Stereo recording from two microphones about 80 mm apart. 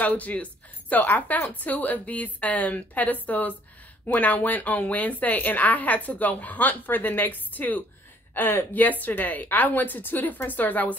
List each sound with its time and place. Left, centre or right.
0.0 s a woman's voice: centre